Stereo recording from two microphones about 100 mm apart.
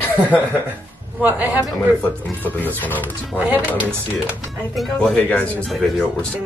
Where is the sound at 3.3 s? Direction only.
15° right (ahead or behind).